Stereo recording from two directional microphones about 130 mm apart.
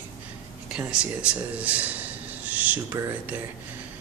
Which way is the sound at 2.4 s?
10° right (ahead or behind).